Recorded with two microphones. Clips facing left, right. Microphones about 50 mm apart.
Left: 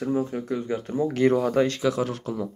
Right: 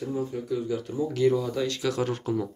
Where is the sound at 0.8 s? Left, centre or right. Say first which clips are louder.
Left 3 dB; left.